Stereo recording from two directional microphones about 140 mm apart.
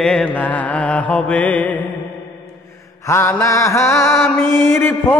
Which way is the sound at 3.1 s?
20° left (ahead or behind).